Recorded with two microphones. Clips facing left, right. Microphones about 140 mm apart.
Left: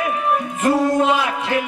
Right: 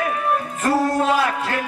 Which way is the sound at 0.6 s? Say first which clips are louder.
Left 3 dB; 20° left (ahead or behind).